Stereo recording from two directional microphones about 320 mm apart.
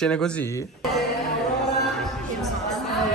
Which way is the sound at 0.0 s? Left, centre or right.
Centre.